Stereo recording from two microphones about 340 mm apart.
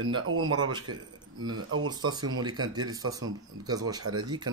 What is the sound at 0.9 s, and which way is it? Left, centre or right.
Speech, right.